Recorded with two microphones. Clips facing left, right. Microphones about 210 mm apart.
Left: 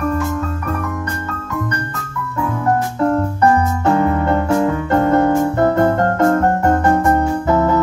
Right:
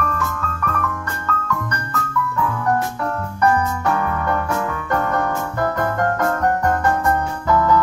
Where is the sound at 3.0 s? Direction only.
25° left (ahead or behind).